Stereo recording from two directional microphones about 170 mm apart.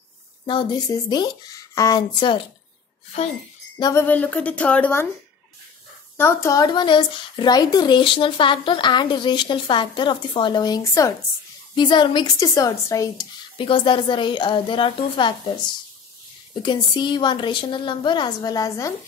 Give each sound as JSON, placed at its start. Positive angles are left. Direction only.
{"t": 0.5, "sound": "speech", "side_deg": 25}
{"t": 3.7, "sound": "a sound", "side_deg": 25}
{"t": 4.0, "sound": "a woman's voice", "side_deg": 10}
{"t": 6.1, "sound": "speech", "side_deg": 15}
{"t": 16.6, "sound": "speech", "side_deg": 25}